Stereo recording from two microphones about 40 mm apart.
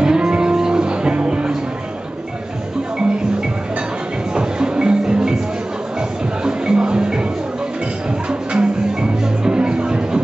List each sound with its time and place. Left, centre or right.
0.0 s music: centre
4.3 s music: right
6.4 s music: right
8.3 s music: right